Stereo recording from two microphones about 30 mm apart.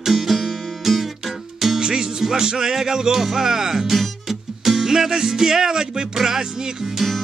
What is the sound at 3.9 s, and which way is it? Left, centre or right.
Music, centre.